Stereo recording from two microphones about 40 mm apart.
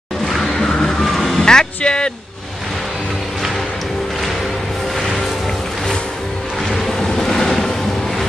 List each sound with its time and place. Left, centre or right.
0.3 s music: centre
1.0 s vehicle: centre
1.4 s music: centre
1.8 s a man's voice: left
7.0 s vehicle: centre